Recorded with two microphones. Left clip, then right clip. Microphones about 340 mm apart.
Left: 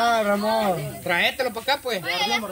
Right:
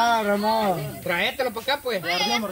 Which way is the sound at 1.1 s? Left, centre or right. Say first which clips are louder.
Left 2 dB; left.